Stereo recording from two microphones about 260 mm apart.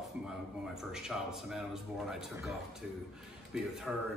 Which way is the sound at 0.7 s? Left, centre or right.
Centre.